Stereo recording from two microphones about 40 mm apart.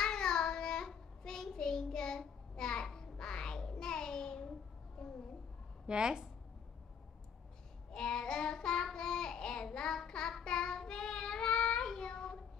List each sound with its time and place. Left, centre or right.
0.0 s child singing: centre
5.9 s a woman's voice: centre
7.9 s child singing: centre